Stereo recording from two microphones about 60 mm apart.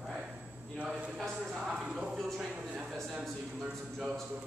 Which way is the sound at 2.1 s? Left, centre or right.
Centre.